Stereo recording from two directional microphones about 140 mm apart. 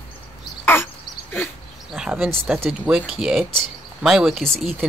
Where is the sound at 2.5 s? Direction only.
15° right (ahead or behind).